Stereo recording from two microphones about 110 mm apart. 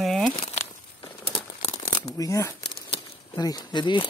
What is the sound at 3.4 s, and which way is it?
Speech, 35° left (ahead or behind).